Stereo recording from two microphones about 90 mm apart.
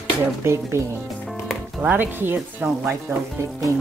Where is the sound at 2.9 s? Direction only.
35° right (ahead or behind).